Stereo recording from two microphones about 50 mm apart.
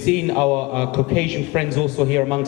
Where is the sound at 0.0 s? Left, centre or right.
Centre.